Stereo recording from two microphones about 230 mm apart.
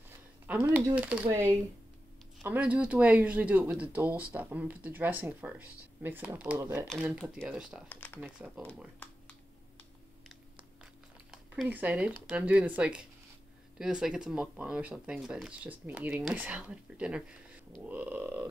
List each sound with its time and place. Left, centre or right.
0.5 s speech: centre
8.6 s a sound: centre
11.5 s speech: centre